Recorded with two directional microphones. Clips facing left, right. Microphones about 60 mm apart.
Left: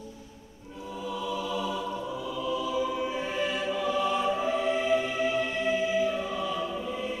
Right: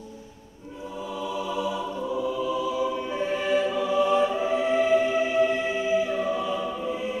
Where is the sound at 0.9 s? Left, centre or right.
Centre.